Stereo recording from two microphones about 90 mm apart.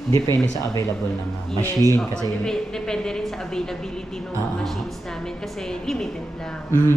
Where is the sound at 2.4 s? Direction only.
5° left (ahead or behind).